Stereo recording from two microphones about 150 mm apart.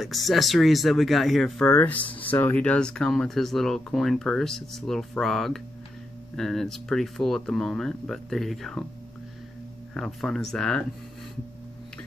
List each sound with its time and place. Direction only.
0.0 s speech: centre (ahead or behind)
9.9 s speech: 5° left (ahead or behind)